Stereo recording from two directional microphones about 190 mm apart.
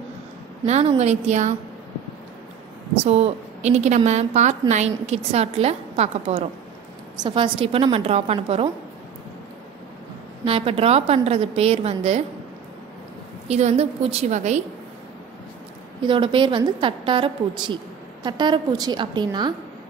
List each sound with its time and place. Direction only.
0.7 s a woman's voice: 35° right (ahead or behind)
3.0 s a woman's voice: 35° right (ahead or behind)
10.4 s a woman's voice: 30° right (ahead or behind)
13.5 s a woman's voice: 35° right (ahead or behind)
16.0 s a woman's voice: 25° right (ahead or behind)